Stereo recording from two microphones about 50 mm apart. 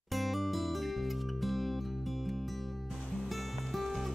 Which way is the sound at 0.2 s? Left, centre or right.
Centre.